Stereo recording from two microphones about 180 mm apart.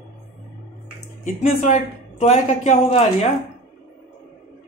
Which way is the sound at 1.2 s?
40° left (ahead or behind).